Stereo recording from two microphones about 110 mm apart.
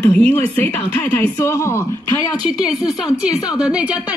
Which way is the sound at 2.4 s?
5° right (ahead or behind).